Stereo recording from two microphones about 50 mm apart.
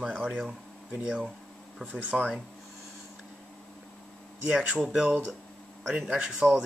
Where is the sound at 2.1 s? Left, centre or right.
Centre.